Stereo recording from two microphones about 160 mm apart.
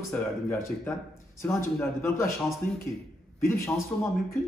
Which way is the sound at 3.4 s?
15° left (ahead or behind).